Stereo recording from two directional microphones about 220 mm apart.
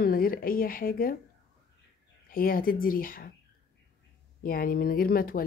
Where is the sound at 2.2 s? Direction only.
40° left (ahead or behind).